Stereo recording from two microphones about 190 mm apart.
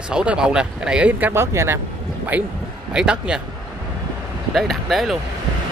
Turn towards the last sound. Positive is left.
turn(degrees=0)  # may be behind; listen again after turning